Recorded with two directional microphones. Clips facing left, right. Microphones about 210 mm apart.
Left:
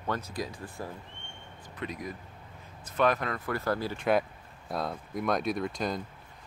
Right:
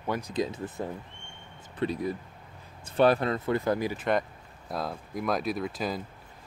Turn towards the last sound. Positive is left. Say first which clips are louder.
# even
turn(degrees=-5)  # may be behind; listen again after turning